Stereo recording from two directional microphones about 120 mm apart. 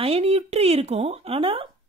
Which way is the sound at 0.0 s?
60° right (ahead or behind).